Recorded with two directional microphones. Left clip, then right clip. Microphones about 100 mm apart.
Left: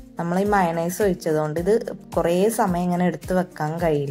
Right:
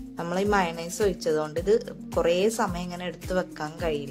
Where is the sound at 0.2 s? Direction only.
25° left (ahead or behind).